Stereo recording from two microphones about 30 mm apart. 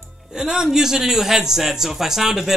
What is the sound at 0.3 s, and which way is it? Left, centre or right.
A man's voice, right.